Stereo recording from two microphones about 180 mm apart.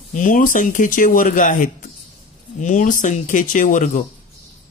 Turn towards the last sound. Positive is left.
turn(degrees=45)  # may be behind; listen again after turning